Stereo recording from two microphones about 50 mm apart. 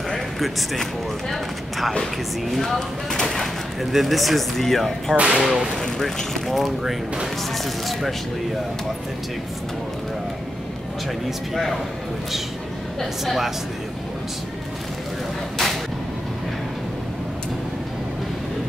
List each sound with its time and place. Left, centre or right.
0.4 s speech: centre
5.1 s speech: right
5.4 s speech: centre
5.8 s speech: centre
11.2 s speech: centre
13.0 s speech: centre
15.5 s a sound: centre